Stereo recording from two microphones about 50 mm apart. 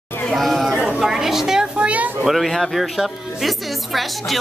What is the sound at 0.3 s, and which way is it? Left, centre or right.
Chatter, centre.